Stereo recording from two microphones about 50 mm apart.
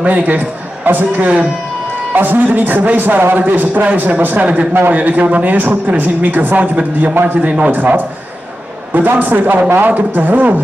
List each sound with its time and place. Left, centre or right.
0.0 s a man's voice: right